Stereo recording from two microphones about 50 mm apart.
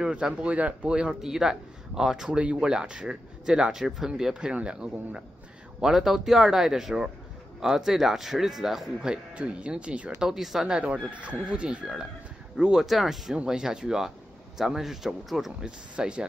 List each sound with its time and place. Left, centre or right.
0.0 s speech: centre
5.8 s speech: centre
9.0 s speech: centre
10.2 s speech: centre
10.9 s speech: right
12.8 s speech: centre
15.6 s speech: centre